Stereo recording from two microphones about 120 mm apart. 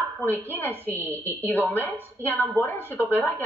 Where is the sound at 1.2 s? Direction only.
20° right (ahead or behind).